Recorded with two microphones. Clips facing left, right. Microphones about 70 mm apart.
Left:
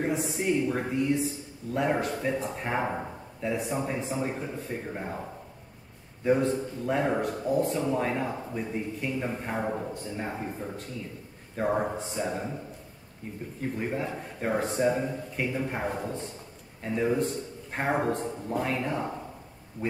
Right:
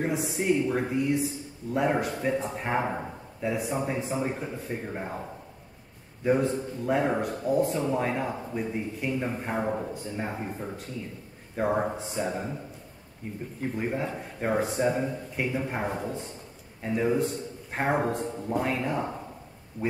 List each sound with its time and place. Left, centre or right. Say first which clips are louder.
0.0 s speech: even; centre
6.2 s speech: even; centre
13.6 s speech: right 1 dB; centre